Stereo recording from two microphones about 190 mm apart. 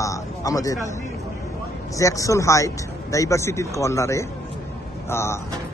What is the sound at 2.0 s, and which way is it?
Speech, 15° left (ahead or behind).